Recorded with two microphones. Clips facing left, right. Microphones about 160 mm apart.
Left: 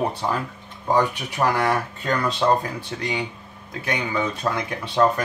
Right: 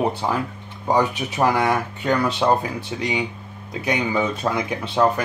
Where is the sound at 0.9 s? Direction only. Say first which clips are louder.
Right 1 dB; 15° right (ahead or behind).